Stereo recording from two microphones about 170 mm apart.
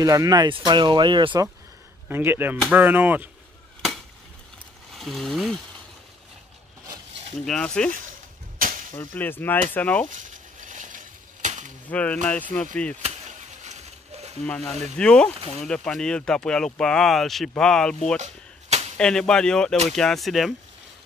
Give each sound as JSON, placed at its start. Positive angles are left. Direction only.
{"t": 0.0, "sound": "speech", "side_deg": -20}
{"t": 2.0, "sound": "speech", "side_deg": -10}
{"t": 4.9, "sound": "speech", "side_deg": 0}
{"t": 7.3, "sound": "speech", "side_deg": 5}
{"t": 8.5, "sound": "a sound", "side_deg": -50}
{"t": 8.9, "sound": "speech", "side_deg": 10}
{"t": 10.1, "sound": "a sound", "side_deg": -50}
{"t": 11.9, "sound": "speech", "side_deg": 10}
{"t": 13.0, "sound": "a sound", "side_deg": -40}
{"t": 14.4, "sound": "speech", "side_deg": 5}
{"t": 18.2, "sound": "a sound", "side_deg": -40}
{"t": 18.9, "sound": "speech", "side_deg": 5}